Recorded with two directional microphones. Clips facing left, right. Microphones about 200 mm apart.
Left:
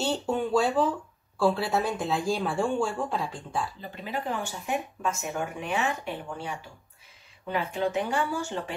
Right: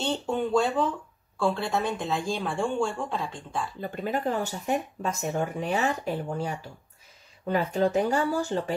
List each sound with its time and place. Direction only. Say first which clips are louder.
0.0 s speech: even; 5° left (ahead or behind)
3.8 s speech: right 5 dB; 50° right (ahead or behind)